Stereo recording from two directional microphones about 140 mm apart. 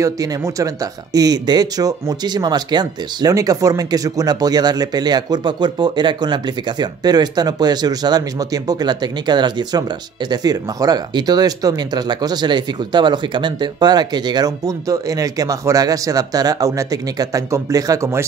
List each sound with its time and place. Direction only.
0.0 s speech: 25° right (ahead or behind)